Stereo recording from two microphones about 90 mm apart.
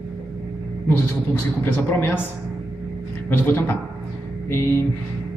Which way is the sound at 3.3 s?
25° left (ahead or behind).